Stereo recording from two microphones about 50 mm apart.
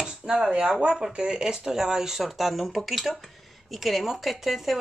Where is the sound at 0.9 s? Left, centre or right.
Centre.